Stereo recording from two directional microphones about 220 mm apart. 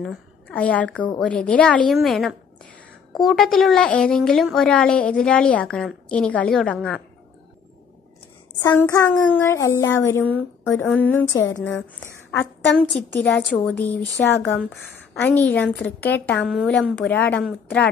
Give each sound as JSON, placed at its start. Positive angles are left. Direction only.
{"t": 0.0, "sound": "a woman's voice", "side_deg": 5}
{"t": 8.5, "sound": "a woman's voice", "side_deg": 15}